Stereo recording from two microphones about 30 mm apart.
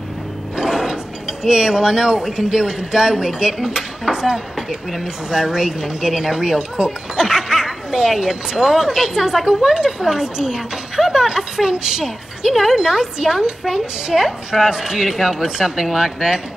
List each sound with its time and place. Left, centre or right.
0.6 s mechanisms: centre
1.4 s a woman's voice: right